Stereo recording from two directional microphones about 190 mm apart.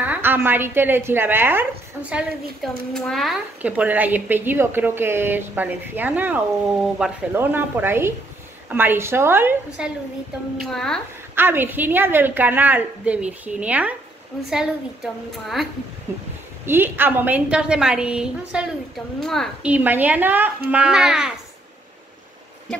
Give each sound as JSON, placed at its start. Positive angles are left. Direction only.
{"t": 0.0, "sound": "a woman's voice", "side_deg": -10}
{"t": 10.6, "sound": "a child's voice", "side_deg": 0}
{"t": 11.3, "sound": "a woman's voice", "side_deg": -10}
{"t": 16.6, "sound": "a woman's voice", "side_deg": -10}